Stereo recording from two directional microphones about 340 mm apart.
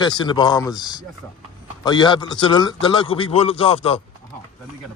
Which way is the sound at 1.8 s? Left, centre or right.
Centre.